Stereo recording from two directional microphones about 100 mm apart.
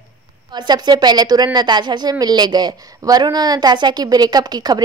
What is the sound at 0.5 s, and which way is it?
A woman's voice, 45° right (ahead or behind).